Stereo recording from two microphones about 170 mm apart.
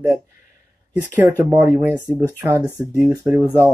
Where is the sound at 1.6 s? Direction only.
10° right (ahead or behind).